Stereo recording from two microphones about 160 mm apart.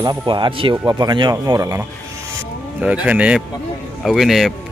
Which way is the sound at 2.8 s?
10° right (ahead or behind).